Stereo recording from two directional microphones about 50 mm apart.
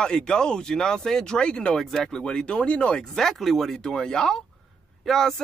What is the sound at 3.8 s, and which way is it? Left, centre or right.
A man's voice, centre.